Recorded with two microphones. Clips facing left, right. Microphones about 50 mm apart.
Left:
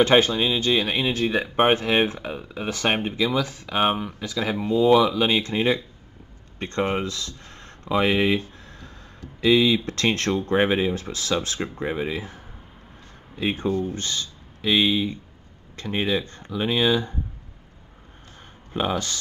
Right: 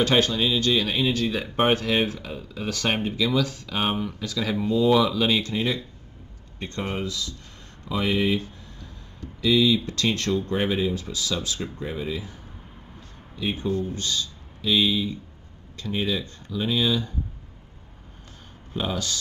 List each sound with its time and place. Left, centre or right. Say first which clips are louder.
0.0 s speech: left 3 dB; left
5.4 s speech: left 4 dB; left
9.4 s speech: left 2 dB; left
13.4 s speech: left 2 dB; left
13.7 s speech: left 1 dB; left
18.7 s speech: left 3 dB; left